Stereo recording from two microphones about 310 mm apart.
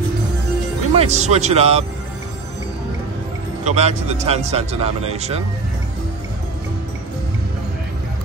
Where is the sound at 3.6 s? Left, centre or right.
Right.